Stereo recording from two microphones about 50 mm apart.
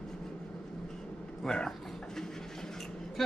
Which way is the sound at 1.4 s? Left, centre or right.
Centre.